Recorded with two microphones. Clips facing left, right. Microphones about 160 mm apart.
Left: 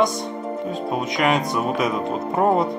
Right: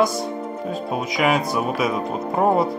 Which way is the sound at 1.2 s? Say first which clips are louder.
Right 1 dB; centre (ahead or behind).